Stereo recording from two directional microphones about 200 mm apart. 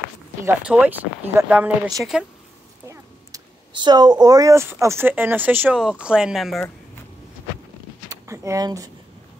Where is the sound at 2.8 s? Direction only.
15° right (ahead or behind); by 6.7 s centre (ahead or behind).